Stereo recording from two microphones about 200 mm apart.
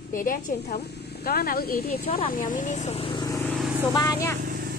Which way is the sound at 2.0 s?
30° left (ahead or behind).